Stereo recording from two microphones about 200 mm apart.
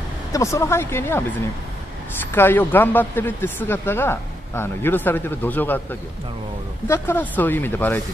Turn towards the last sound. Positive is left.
turn(degrees=10)  # may be behind; listen again after turning